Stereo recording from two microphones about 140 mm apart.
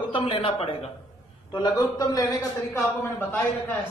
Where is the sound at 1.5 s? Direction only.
30° left (ahead or behind).